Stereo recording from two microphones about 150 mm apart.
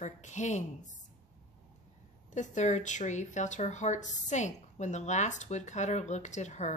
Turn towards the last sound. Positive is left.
turn(degrees=50)  # may be behind; listen again after turning